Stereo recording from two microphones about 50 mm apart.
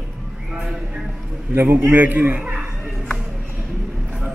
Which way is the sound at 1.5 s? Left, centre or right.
Right.